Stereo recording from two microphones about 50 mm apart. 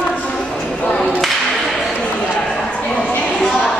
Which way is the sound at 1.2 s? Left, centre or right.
Centre.